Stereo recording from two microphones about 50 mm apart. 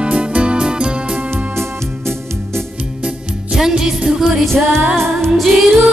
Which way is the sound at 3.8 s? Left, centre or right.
Centre.